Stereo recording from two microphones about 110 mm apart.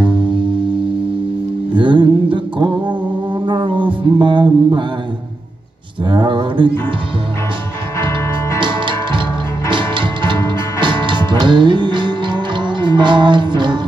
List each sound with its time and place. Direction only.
1.8 s music: 50° right (ahead or behind)
6.0 s a sound: 45° right (ahead or behind)
8.5 s music: 45° right (ahead or behind)